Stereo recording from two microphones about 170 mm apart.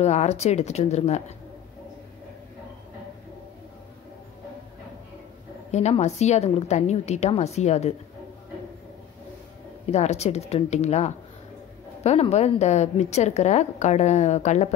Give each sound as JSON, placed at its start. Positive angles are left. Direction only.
{"t": 0.0, "sound": "a woman's voice", "side_deg": 40}
{"t": 5.7, "sound": "a woman's voice", "side_deg": 40}
{"t": 9.8, "sound": "a woman's voice", "side_deg": 40}